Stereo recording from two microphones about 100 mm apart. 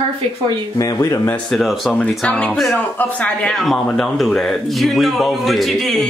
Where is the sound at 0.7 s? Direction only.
35° left (ahead or behind).